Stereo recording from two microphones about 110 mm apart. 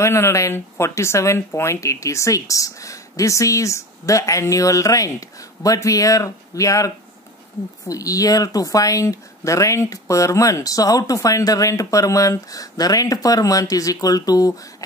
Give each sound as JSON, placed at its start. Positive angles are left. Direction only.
{"t": 0.0, "sound": "speech", "side_deg": 25}
{"t": 7.9, "sound": "speech", "side_deg": 30}